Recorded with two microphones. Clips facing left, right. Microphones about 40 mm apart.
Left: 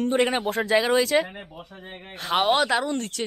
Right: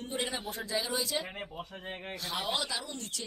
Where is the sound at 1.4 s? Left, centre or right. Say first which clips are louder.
Even; left.